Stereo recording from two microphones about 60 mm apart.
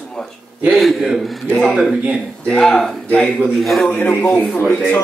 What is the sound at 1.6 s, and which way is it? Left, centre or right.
Speech, centre.